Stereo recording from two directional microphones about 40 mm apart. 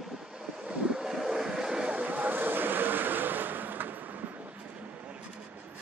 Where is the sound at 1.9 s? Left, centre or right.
Right.